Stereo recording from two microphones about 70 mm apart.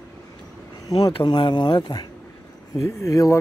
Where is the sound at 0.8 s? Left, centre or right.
Left.